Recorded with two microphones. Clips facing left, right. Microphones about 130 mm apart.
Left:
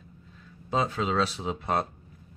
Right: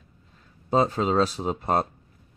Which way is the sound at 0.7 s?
40° right (ahead or behind).